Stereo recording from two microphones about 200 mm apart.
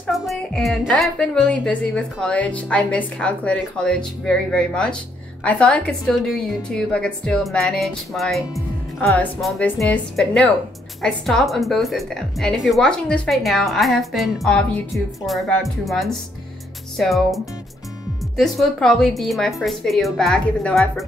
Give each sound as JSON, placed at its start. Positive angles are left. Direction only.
{"t": 0.0, "sound": "a woman's voice", "side_deg": 0}